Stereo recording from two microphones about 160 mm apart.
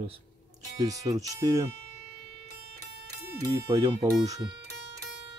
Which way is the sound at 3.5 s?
20° right (ahead or behind).